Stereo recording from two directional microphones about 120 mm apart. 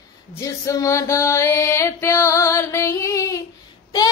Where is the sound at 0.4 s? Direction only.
25° left (ahead or behind).